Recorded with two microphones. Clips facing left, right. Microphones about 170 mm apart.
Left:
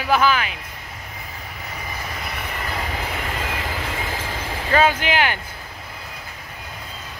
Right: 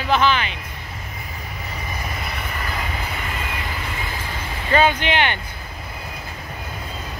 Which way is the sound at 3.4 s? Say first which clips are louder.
Left 2 dB; 90° left.